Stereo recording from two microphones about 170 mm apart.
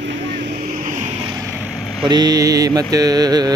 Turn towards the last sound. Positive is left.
turn(degrees=-25)  # may be behind; listen again after turning